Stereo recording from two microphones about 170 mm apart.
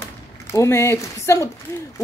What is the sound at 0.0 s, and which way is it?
Speech, 15° left (ahead or behind).